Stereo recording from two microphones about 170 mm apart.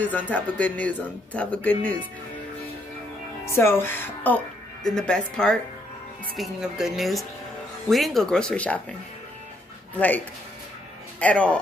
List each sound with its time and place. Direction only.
0.0 s speech: 10° left (ahead or behind)
3.4 s speech: 15° left (ahead or behind)
9.9 s speech: 10° left (ahead or behind)